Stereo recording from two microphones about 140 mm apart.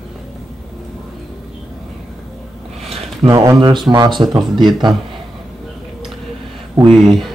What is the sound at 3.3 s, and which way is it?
Speech, 25° right (ahead or behind).